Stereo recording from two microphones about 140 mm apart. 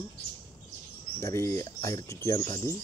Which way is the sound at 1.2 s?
20° left (ahead or behind).